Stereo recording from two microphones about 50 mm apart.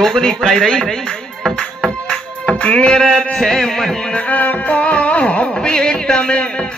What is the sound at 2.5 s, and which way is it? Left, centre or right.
Music, left.